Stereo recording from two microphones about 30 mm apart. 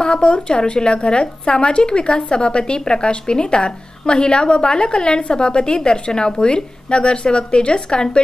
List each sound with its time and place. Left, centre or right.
0.0 s a woman's voice: left